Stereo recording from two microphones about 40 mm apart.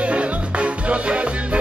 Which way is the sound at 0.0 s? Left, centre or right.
Right.